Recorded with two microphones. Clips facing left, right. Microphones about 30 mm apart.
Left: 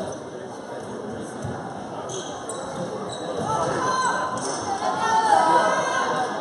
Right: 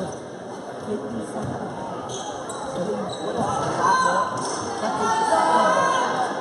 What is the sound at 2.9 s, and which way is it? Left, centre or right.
Basketball bounce, centre.